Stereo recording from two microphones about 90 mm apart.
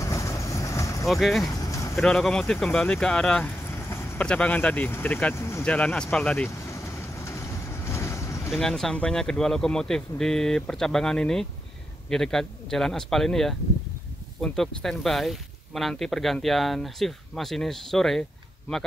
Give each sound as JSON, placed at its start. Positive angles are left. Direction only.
{"t": 0.0, "sound": "vehicle", "side_deg": 35}
{"t": 1.0, "sound": "speech", "side_deg": 0}
{"t": 1.5, "sound": "a sound", "side_deg": 35}
{"t": 2.0, "sound": "speech", "side_deg": 10}
{"t": 5.3, "sound": "speech", "side_deg": 30}
{"t": 5.6, "sound": "speech", "side_deg": 15}
{"t": 6.4, "sound": "vehicle", "side_deg": 30}
{"t": 8.5, "sound": "speech", "side_deg": 5}